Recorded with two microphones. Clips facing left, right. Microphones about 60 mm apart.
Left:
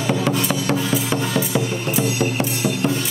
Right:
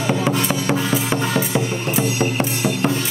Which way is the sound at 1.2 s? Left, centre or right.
Right.